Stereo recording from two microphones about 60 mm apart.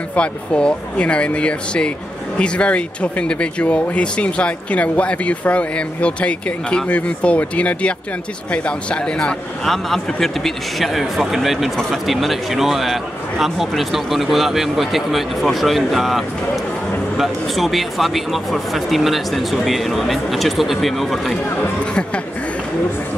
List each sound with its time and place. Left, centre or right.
0.1 s a man's voice: left; by 21.4 s centre